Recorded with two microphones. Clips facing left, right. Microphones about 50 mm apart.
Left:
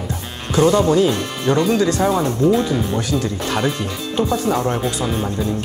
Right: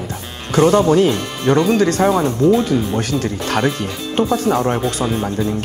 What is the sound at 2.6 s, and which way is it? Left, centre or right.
Speech, right.